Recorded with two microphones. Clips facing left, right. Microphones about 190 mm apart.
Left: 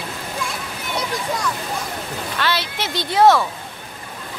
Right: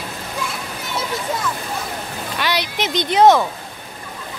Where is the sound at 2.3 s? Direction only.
15° right (ahead or behind).